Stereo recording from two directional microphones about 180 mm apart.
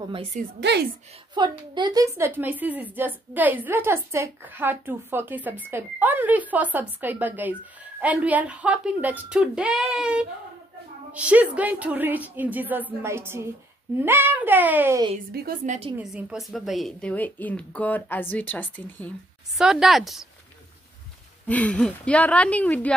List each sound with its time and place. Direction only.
0.1 s a woman's voice: 35° right (ahead or behind)
0.6 s a woman's voice: 70° right (ahead or behind)
1.4 s a woman's voice: 25° right (ahead or behind)
15.6 s a woman's voice: 45° right (ahead or behind)
16.0 s a woman's voice: 5° right (ahead or behind)
19.6 s a woman's voice: centre (ahead or behind)
21.5 s a woman's voice: 10° left (ahead or behind)